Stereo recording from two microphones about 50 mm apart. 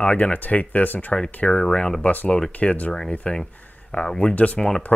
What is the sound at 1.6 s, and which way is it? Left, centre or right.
Speech, centre.